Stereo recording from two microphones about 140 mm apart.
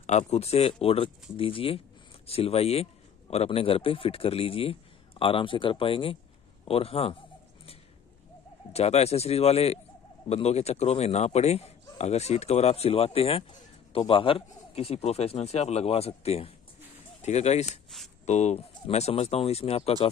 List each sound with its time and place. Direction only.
0.0 s a man's voice: 55° left (ahead or behind)
8.7 s speech: 50° left (ahead or behind)